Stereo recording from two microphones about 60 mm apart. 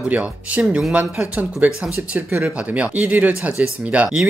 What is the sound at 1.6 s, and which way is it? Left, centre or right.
Speech, right.